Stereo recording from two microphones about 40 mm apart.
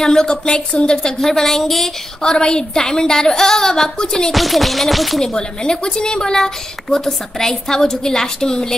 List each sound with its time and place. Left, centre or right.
0.0 s a woman's voice: centre
2.2 s a woman's voice: left
4.3 s music: centre
5.2 s a woman's voice: centre